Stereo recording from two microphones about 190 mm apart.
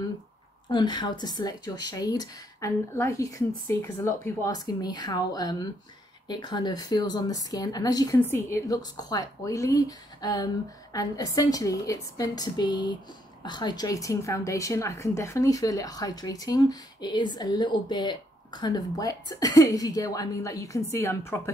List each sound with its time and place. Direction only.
0.7 s a woman's voice: 25° left (ahead or behind)